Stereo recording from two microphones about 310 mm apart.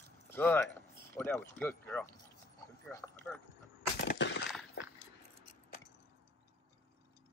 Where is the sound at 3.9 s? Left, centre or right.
Left.